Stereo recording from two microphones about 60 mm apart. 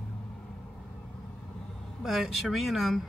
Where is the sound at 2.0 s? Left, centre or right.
Centre.